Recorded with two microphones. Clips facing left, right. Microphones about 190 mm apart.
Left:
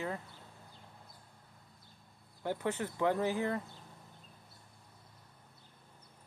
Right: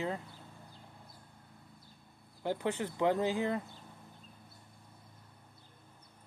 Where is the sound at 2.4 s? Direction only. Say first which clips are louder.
Right 1 dB; 20° right (ahead or behind).